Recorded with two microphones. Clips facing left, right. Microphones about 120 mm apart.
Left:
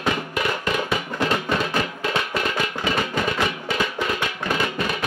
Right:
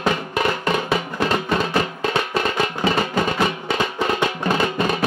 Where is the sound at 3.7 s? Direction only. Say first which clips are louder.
Right 3 dB; 30° right (ahead or behind).